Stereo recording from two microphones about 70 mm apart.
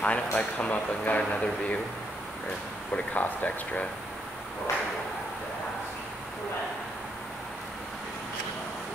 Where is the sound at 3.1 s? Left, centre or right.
Left.